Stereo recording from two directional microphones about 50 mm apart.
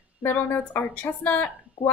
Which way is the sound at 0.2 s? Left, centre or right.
Left.